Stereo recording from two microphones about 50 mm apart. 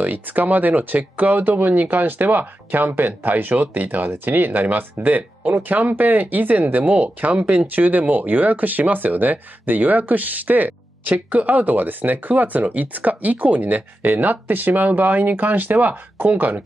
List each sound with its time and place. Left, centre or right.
0.0 s speech: right